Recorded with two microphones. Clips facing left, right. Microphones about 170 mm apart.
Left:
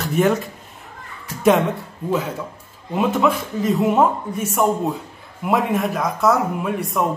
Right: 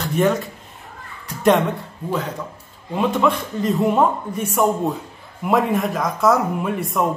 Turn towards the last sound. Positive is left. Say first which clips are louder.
# even
turn(degrees=0)  # may be behind; listen again after turning